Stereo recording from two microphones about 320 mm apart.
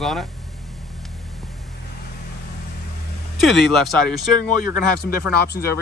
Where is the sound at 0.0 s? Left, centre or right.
Centre.